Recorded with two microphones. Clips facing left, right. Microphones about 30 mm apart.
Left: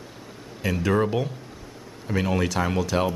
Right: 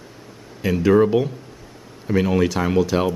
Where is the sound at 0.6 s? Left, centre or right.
Centre.